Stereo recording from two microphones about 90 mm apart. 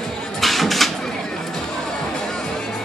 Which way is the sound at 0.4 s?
Centre (ahead or behind).